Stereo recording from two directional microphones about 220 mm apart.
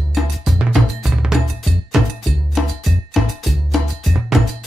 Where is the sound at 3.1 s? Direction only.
Centre (ahead or behind).